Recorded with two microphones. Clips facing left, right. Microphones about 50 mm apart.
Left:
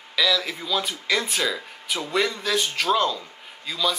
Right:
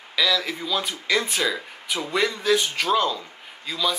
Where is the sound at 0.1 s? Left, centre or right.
Centre.